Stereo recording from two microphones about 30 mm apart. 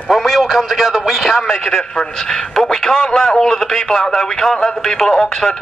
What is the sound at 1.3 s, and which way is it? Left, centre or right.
A man's voice, left.